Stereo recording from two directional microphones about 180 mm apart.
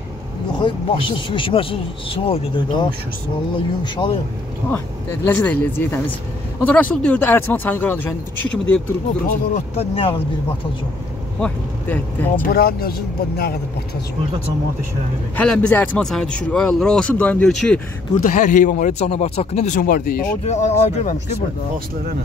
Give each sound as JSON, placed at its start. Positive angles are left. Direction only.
{"t": 0.6, "sound": "speech", "side_deg": 25}
{"t": 4.7, "sound": "speech", "side_deg": 10}
{"t": 9.5, "sound": "speech", "side_deg": 35}
{"t": 11.3, "sound": "speech", "side_deg": 5}
{"t": 12.4, "sound": "speech", "side_deg": 55}
{"t": 15.3, "sound": "speech", "side_deg": 5}
{"t": 18.2, "sound": "a man's voice", "side_deg": 45}
{"t": 20.4, "sound": "speech", "side_deg": 40}